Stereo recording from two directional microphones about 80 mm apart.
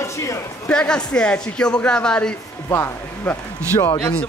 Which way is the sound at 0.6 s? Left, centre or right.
Centre.